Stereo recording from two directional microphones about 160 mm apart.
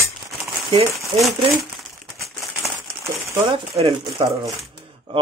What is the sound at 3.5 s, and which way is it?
Speech, 35° right (ahead or behind).